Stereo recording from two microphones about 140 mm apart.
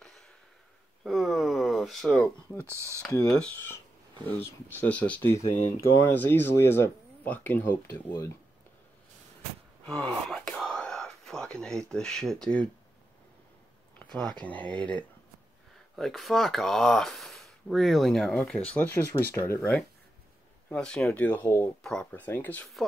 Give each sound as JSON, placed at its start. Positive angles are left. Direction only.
{"t": 1.0, "sound": "a sound", "side_deg": 0}
{"t": 2.6, "sound": "speech", "side_deg": -20}
{"t": 3.3, "sound": "speech", "side_deg": 5}
{"t": 9.8, "sound": "whispering", "side_deg": 5}
{"t": 11.9, "sound": "speech", "side_deg": 5}
{"t": 13.9, "sound": "a sound", "side_deg": 5}
{"t": 14.4, "sound": "speech", "side_deg": 10}